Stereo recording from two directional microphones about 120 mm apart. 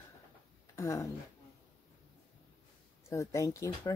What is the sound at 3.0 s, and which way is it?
Speech, 25° left (ahead or behind).